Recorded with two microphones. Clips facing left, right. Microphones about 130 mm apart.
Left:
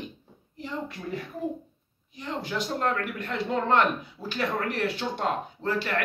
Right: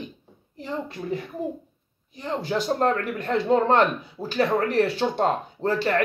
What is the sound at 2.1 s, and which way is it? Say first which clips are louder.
Speech: right 5 dB; 35° right (ahead or behind).